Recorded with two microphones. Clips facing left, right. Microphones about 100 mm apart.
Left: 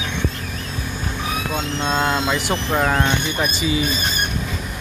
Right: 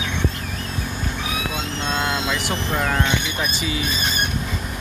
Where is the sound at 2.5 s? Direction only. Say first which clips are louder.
Left 3 dB; 30° left (ahead or behind).